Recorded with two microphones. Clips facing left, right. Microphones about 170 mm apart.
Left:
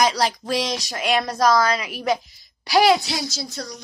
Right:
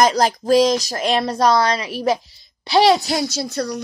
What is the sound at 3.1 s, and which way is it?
Speech, 60° right (ahead or behind).